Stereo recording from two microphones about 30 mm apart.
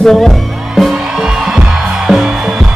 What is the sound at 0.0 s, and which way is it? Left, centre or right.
Music, centre.